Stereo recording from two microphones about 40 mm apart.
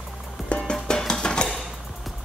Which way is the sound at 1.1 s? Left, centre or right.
Left.